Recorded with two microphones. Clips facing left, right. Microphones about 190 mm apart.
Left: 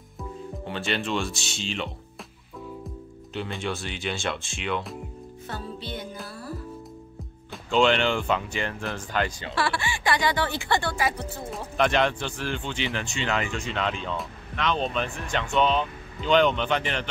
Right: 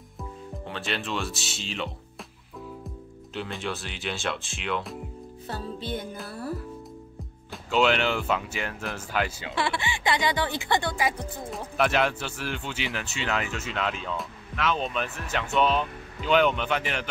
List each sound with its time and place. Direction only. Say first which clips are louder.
0.2 s speech: left 3 dB; centre (ahead or behind)
3.3 s speech: left 2 dB; centre (ahead or behind)
5.8 s music: right 3 dB; 50° right (ahead or behind)
7.5 s speech: left 2 dB; 5° right (ahead or behind)
9.6 s speech: left 1 dB; 20° right (ahead or behind)